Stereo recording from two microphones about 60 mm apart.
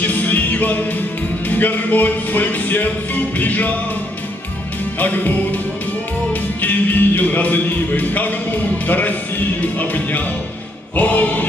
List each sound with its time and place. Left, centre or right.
0.0 s music: left
4.9 s music: left